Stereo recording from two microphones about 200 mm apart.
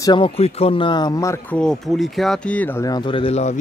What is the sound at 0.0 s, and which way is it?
Speech, 25° left (ahead or behind).